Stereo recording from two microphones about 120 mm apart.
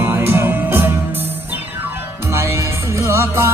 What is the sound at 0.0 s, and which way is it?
Music, 20° right (ahead or behind).